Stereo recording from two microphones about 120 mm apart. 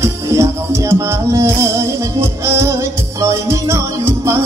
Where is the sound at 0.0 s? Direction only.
25° right (ahead or behind).